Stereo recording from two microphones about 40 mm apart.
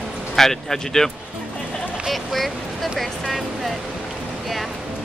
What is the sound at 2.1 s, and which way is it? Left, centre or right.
Speech, centre.